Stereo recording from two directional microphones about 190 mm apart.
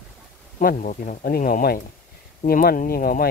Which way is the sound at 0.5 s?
45° left (ahead or behind).